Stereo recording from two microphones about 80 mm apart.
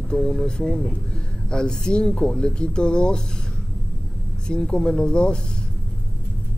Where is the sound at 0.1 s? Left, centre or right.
Centre.